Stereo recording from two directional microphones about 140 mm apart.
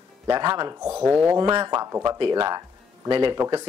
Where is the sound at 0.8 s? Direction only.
5° right (ahead or behind).